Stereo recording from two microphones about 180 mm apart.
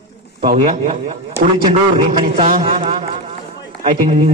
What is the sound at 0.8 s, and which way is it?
Speech, 45° right (ahead or behind).